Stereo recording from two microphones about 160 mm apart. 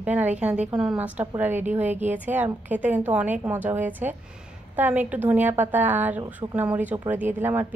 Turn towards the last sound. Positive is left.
turn(degrees=-15)  # may be behind; listen again after turning